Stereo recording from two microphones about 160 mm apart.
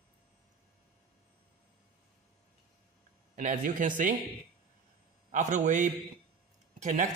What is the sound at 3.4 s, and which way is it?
Speech, 55° right (ahead or behind).